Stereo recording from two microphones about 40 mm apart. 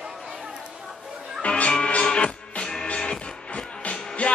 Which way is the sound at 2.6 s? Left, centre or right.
Centre.